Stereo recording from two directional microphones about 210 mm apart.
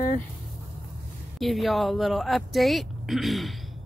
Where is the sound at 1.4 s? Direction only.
Centre (ahead or behind).